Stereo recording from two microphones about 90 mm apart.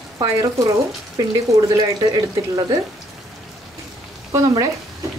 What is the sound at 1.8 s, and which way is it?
Speech, 50° right (ahead or behind).